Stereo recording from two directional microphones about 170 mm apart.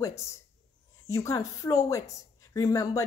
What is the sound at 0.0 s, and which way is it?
Speech, 15° left (ahead or behind).